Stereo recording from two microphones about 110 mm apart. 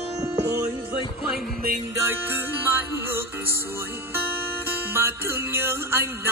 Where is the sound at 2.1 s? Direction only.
20° right (ahead or behind).